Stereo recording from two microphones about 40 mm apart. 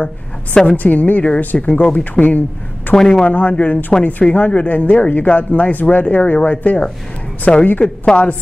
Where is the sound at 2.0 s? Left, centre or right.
Left.